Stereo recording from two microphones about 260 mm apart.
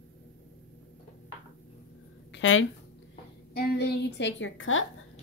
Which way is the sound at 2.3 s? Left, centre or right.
Left.